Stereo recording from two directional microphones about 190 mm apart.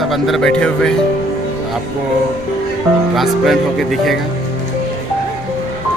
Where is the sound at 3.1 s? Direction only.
Centre (ahead or behind).